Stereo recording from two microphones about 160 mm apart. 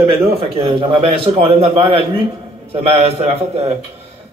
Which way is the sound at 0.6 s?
35° right (ahead or behind).